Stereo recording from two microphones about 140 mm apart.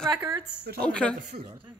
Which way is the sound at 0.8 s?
5° left (ahead or behind).